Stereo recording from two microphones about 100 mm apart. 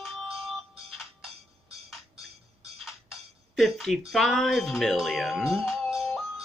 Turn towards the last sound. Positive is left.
turn(degrees=0)  # may be behind; listen again after turning